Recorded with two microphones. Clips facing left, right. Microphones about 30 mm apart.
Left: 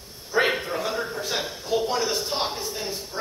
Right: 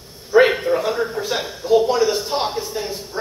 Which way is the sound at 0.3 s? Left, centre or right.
Centre.